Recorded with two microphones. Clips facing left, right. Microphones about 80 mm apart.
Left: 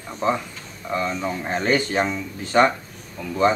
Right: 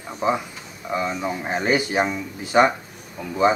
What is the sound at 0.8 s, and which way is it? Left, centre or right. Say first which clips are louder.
Speech: even; centre.